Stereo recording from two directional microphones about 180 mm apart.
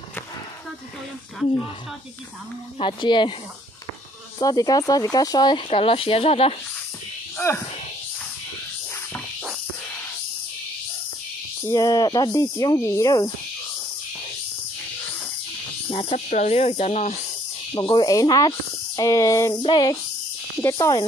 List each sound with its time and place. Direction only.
2.8 s speech: 25° left (ahead or behind)
4.4 s speech: 20° left (ahead or behind)
7.3 s a sound: 15° left (ahead or behind)
11.6 s speech: 20° left (ahead or behind)
15.9 s speech: 30° left (ahead or behind)
17.7 s speech: 25° left (ahead or behind)
18.9 s a sound: 20° left (ahead or behind)
19.5 s speech: 25° left (ahead or behind)